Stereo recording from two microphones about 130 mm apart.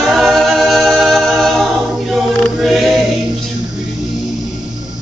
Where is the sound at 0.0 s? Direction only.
Centre (ahead or behind).